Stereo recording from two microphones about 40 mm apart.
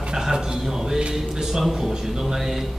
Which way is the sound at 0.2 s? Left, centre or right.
Centre.